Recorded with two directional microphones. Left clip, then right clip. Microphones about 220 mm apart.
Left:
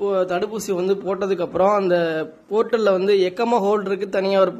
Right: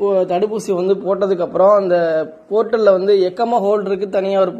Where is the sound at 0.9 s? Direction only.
15° left (ahead or behind).